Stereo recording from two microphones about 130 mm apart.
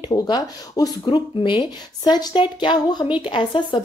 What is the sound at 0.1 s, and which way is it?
A woman's voice, 30° left (ahead or behind).